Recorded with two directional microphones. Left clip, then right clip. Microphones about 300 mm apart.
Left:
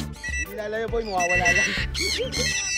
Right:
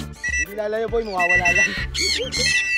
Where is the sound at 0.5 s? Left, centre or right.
Right.